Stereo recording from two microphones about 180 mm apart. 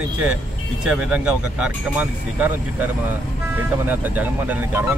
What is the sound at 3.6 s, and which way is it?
Speech, 10° right (ahead or behind).